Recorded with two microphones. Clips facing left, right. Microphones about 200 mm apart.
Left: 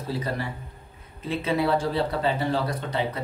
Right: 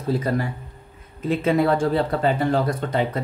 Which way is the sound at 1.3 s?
50° right (ahead or behind).